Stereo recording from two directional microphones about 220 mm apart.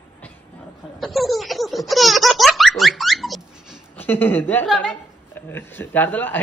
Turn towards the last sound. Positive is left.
turn(degrees=10)  # may be behind; listen again after turning